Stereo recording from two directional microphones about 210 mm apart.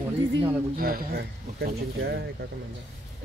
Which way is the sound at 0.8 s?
45° right (ahead or behind).